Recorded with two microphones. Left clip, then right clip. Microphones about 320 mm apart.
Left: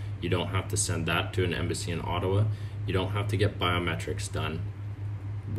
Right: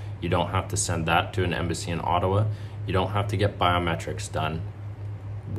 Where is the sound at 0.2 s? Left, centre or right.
Centre.